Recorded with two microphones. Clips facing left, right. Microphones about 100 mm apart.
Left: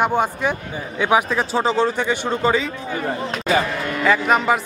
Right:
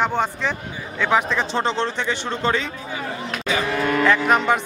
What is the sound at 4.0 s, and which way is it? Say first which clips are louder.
Speech: left 2 dB; centre (ahead or behind).